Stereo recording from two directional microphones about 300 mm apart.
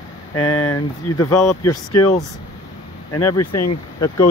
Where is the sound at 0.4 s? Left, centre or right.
Left.